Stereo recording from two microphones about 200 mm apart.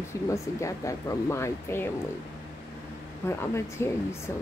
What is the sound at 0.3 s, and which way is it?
Speech, 15° left (ahead or behind).